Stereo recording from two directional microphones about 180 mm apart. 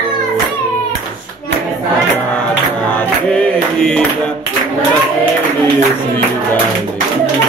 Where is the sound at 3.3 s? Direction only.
5° left (ahead or behind).